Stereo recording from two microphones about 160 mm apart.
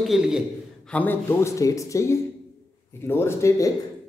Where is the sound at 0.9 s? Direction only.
10° left (ahead or behind).